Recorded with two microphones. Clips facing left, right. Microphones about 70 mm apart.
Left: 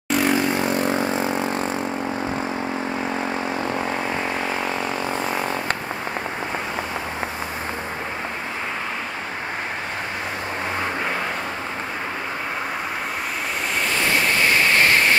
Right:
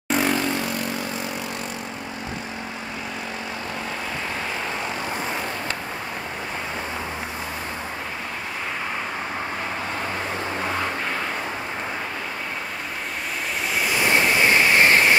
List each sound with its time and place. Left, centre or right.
0.1 s vehicle: centre
0.4 s vehicle: left
13.9 s waves: centre